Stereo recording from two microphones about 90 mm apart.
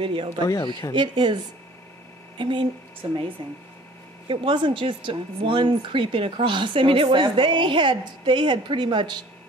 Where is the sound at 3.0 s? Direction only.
80° right.